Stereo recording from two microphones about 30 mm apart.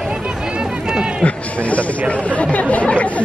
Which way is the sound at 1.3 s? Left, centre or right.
Left.